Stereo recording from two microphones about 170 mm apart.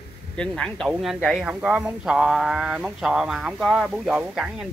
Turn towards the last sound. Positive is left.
turn(degrees=-5)  # may be behind; listen again after turning